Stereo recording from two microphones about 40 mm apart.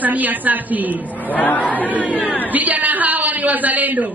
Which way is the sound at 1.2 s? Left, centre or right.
Left.